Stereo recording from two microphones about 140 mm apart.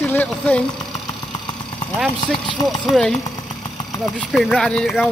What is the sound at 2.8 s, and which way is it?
Speech, 5° left (ahead or behind).